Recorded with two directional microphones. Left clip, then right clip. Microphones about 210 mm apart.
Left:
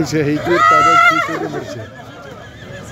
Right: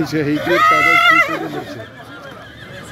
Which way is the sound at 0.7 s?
20° right (ahead or behind).